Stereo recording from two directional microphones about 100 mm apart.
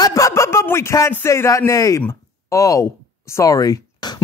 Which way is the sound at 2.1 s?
35° left (ahead or behind).